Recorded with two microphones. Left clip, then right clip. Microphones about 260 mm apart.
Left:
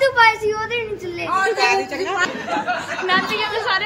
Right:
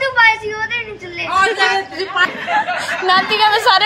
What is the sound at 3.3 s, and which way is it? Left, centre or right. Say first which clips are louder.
Speech: right 9 dB; centre.